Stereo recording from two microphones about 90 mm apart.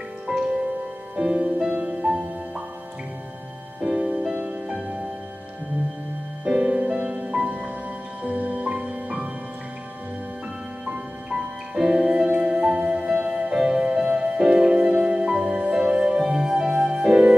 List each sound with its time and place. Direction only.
0.3 s music: 10° right (ahead or behind)
3.8 s music: 10° right (ahead or behind)
6.4 s music: 10° right (ahead or behind)
11.7 s music: 5° right (ahead or behind)